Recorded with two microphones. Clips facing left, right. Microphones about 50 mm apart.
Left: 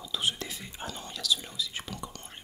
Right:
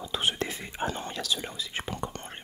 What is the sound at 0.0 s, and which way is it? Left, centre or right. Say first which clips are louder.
Whispering: right 3 dB; right.